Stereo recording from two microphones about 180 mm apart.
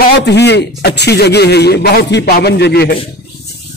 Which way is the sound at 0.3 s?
70° left (ahead or behind).